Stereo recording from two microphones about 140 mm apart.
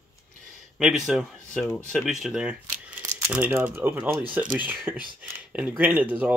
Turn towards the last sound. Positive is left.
turn(degrees=-10)  # may be behind; listen again after turning